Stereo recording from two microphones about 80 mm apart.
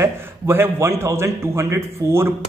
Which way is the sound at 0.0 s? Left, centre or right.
Right.